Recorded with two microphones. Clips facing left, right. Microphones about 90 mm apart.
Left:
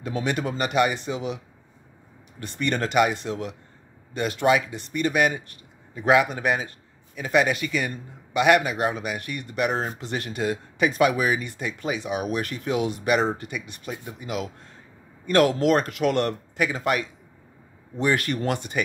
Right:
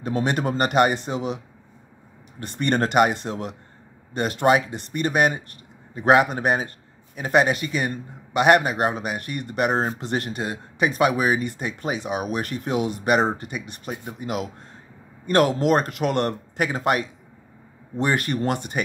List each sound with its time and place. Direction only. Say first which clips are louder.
0.0 s a man's voice: right 3 dB; 40° right (ahead or behind)
2.4 s a man's voice: right 3 dB; 45° right (ahead or behind)
9.7 s speech: right 6 dB; 30° right (ahead or behind)
9.9 s a man's voice: right 4 dB; 50° right (ahead or behind)
10.3 s a man's voice: left 3 dB; 30° right (ahead or behind)
14.2 s a man's voice: right 2 dB; 50° right (ahead or behind)
15.2 s a man's voice: even; 40° right (ahead or behind)
18.0 s a man's voice: even; 35° right (ahead or behind)